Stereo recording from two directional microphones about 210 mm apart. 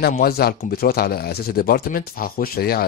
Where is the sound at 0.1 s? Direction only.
45° left (ahead or behind).